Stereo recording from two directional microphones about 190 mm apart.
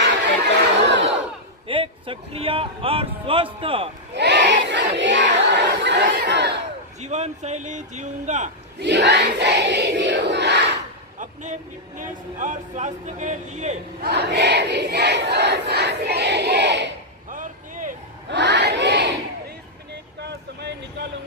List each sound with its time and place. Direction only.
0.5 s crowd: 65° right (ahead or behind)
1.7 s a man's voice: 30° right (ahead or behind)
4.1 s battle cry: 65° right (ahead or behind)
7.0 s a man's voice: 35° right (ahead or behind)
8.7 s battle cry: 65° right (ahead or behind)
12.0 s a man's voice: 40° right (ahead or behind)
14.0 s battle cry: 60° right (ahead or behind)
17.3 s a sound: 45° right (ahead or behind)
18.3 s crowd: 65° right (ahead or behind)
20.2 s vehicle: 60° right (ahead or behind)